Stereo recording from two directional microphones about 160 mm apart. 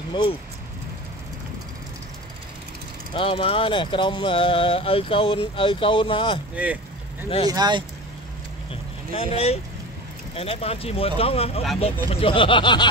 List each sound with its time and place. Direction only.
0.1 s speech: 30° left (ahead or behind)
3.2 s speech: 35° left (ahead or behind)
6.5 s speech: 10° right (ahead or behind)
7.4 s speech: 25° right (ahead or behind)
9.1 s speech: 40° left (ahead or behind)